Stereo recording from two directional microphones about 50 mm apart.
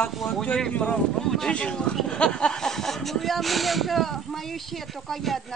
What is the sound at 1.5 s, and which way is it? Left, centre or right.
Speech, centre.